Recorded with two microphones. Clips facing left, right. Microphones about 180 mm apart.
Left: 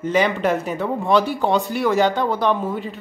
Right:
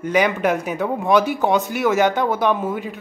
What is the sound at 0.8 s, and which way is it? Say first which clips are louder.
Speech: right 2 dB; 15° right (ahead or behind).